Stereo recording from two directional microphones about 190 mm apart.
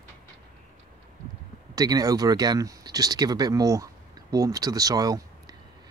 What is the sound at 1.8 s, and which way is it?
Speech, 20° right (ahead or behind).